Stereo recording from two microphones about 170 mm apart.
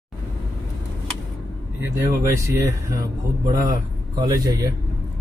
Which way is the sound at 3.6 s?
20° right (ahead or behind).